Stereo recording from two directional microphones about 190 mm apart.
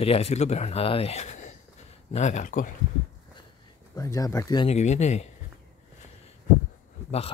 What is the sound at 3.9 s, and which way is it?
Speech, 15° left (ahead or behind).